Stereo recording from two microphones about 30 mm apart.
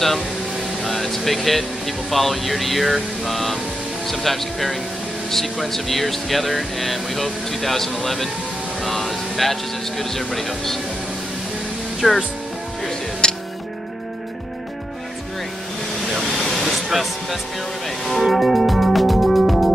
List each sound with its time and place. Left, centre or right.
0.8 s speech: centre
12.0 s speech: centre
13.2 s music: left
16.2 s vehicle: centre
18.0 s music: centre